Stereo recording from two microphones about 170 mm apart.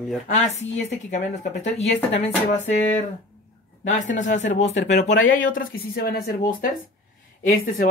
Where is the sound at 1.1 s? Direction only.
40° left (ahead or behind).